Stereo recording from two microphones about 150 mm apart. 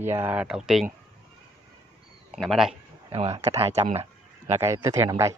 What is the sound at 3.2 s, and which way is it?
Speech, 45° right (ahead or behind).